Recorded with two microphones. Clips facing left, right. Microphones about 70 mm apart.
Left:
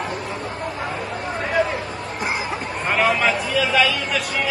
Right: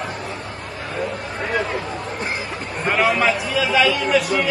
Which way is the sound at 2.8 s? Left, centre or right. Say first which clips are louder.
Right 1 dB; centre.